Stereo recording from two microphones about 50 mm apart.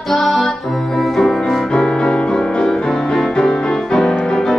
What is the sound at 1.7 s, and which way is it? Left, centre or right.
Music, centre.